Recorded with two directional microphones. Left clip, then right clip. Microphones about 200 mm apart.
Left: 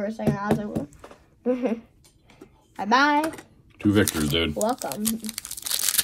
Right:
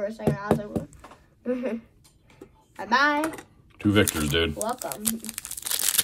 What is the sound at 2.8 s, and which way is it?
Speech, 30° left (ahead or behind).